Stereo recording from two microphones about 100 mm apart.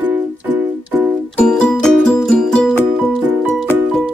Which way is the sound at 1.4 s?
10° left (ahead or behind).